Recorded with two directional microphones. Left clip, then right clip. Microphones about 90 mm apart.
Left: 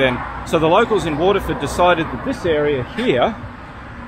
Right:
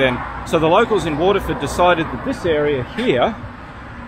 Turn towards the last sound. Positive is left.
turn(degrees=0)  # may be behind; listen again after turning